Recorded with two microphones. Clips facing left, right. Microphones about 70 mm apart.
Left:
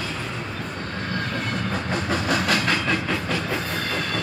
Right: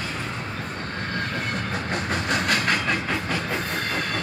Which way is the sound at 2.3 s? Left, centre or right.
Right.